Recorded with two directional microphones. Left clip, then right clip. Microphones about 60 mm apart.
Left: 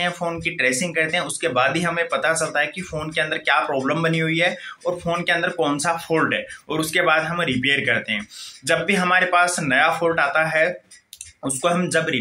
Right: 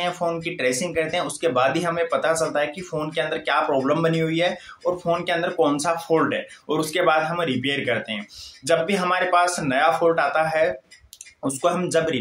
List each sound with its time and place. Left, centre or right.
0.0 s speech: right